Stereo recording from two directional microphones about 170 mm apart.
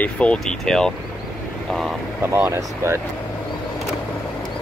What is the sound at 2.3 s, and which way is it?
Speech, 15° right (ahead or behind).